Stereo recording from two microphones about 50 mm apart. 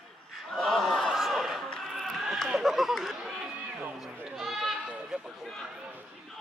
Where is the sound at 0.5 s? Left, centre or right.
Centre.